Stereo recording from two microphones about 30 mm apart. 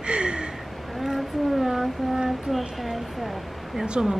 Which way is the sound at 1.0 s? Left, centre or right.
Centre.